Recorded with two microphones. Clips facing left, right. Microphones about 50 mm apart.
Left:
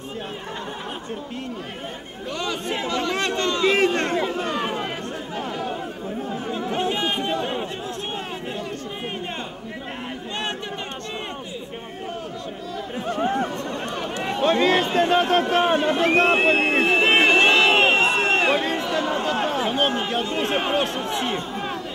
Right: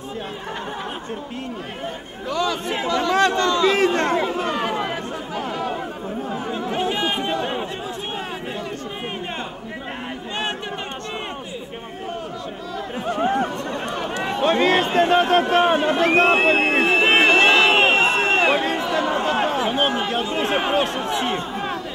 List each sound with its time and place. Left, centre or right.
2.9 s a man's voice: left
3.8 s speech: right
5.5 s chatter: right
6.7 s chatter: centre
13.0 s chatter: right
14.2 s a man's voice: right
16.1 s a sound: centre
18.0 s a sound: right
18.3 s a sound: centre
18.9 s chatter: right
19.6 s speech: centre